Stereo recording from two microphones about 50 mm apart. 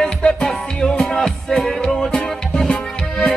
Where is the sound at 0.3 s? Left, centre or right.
Centre.